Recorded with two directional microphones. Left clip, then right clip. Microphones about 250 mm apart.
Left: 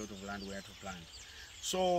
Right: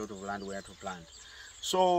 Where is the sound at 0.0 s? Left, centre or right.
Centre.